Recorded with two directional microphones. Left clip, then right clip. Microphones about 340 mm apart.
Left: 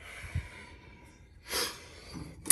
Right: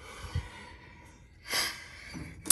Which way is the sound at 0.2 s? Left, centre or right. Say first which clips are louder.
Right 1 dB; centre.